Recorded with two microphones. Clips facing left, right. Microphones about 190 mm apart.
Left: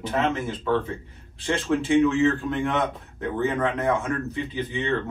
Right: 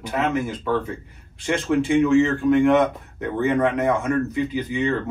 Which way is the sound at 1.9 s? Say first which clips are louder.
Right 2 dB; centre (ahead or behind).